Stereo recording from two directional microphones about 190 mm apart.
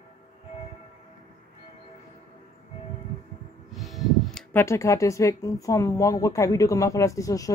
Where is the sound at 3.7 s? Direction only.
Centre (ahead or behind).